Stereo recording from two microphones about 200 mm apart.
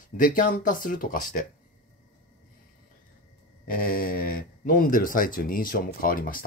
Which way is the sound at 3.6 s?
45° left (ahead or behind).